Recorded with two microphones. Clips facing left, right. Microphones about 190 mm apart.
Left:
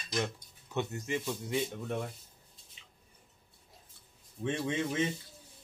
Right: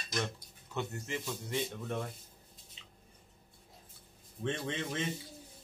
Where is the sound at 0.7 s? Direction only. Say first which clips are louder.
Left 4 dB; 20° left (ahead or behind).